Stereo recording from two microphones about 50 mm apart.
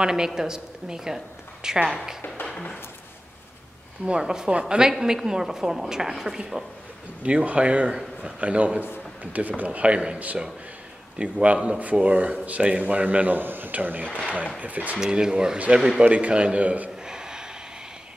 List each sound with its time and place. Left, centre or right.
0.0 s a woman's voice: centre
2.4 s a sound: left
4.0 s a woman's voice: centre
7.2 s a man's voice: right
15.0 s a woman's voice: centre; by 16.9 s right
17.0 s a sound: centre